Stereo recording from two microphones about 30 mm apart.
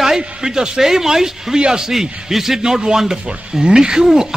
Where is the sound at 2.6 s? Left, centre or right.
Right.